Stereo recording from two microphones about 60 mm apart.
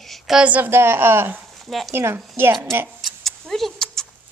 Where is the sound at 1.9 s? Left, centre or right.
Right.